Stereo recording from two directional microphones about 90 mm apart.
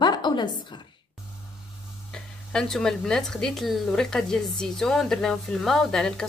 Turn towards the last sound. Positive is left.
turn(degrees=5)  # may be behind; listen again after turning